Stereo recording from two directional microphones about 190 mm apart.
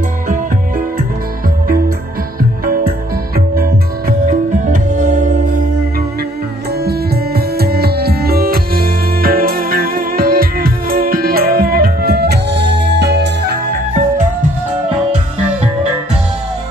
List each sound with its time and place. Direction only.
2.6 s music: 50° right (ahead or behind)
4.3 s music: 40° right (ahead or behind)
6.8 s music: 55° right (ahead or behind)